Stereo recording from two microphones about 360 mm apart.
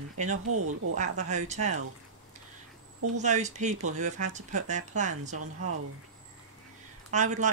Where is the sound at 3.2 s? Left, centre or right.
Centre.